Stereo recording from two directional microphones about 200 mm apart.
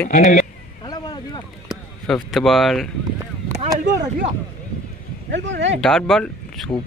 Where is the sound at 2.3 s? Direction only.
Centre (ahead or behind).